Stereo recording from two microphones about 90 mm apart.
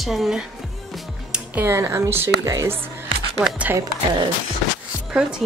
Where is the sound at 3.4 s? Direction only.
15° right (ahead or behind).